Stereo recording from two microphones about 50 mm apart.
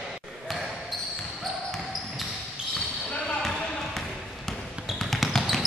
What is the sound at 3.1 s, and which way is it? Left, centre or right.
Basketball bounce, centre.